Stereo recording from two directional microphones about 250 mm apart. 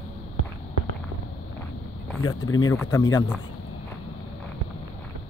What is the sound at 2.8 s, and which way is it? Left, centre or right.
Speech, centre.